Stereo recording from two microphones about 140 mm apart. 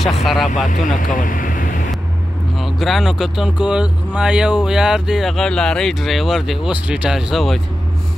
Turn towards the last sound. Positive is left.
turn(degrees=0)  # may be behind; listen again after turning